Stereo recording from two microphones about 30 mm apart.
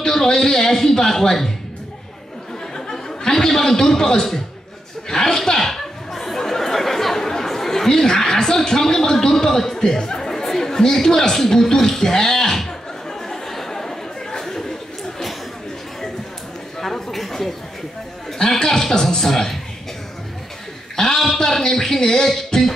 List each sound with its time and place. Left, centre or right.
0.0 s a man's voice: left
2.7 s speech: left
5.1 s chatter: centre
8.6 s a man's voice: centre
13.3 s a sound: centre
16.8 s a sound: centre
18.5 s a man's voice: centre
20.9 s a sound: centre
21.5 s a man's voice: centre
22.5 s music: left